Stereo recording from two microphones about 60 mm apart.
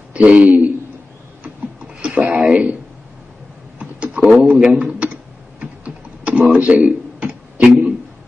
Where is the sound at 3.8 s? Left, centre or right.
Right.